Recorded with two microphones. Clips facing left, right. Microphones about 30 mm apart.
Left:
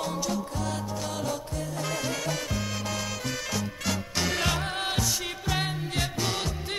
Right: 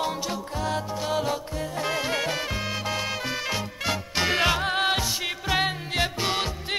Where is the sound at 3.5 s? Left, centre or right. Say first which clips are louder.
Right 2 dB; right.